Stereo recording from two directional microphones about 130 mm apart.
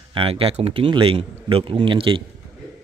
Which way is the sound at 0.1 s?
45° right (ahead or behind).